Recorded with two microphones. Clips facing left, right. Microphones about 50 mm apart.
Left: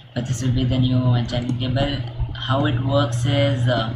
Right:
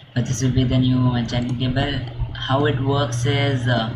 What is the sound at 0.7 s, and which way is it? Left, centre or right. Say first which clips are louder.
Speech: right 1 dB; right.